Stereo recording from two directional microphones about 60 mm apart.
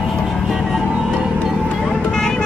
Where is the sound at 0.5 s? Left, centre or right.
Centre.